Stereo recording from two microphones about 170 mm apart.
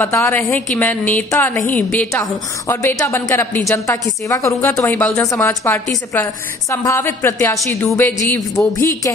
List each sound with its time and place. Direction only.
0.0 s a woman's voice: 10° left (ahead or behind)